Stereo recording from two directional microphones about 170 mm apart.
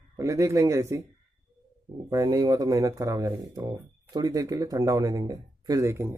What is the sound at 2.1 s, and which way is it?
Speech, 20° right (ahead or behind).